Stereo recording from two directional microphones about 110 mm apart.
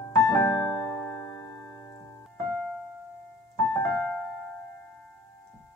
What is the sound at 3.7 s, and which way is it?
Music, 25° left (ahead or behind).